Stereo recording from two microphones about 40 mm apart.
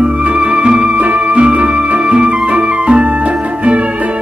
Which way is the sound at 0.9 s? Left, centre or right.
Right.